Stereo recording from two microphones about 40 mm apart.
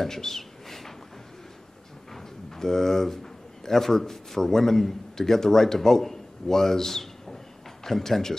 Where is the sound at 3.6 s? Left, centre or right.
Centre.